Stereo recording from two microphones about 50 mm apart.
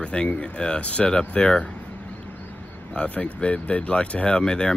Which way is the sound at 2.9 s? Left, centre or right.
Left.